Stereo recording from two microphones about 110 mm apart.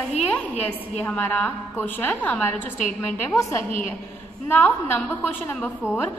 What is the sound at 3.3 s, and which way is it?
Speech, 30° left (ahead or behind).